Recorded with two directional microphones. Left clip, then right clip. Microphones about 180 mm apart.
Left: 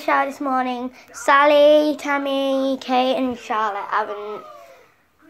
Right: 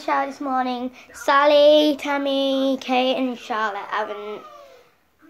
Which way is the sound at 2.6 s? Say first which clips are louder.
Even; 10° right (ahead or behind).